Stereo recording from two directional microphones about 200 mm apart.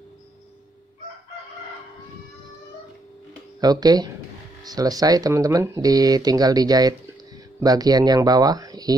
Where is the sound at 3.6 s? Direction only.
20° right (ahead or behind).